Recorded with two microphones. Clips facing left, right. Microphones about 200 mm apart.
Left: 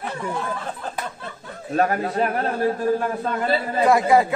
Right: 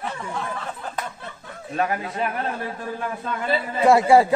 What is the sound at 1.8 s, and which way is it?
A man's voice, 45° left (ahead or behind).